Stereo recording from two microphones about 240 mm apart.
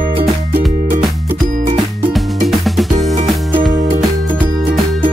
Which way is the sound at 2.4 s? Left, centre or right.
Centre.